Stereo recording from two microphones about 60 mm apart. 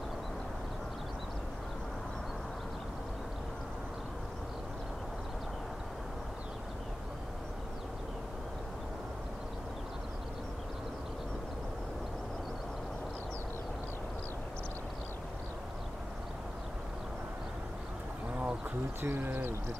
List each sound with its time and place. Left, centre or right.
18.9 s speech: right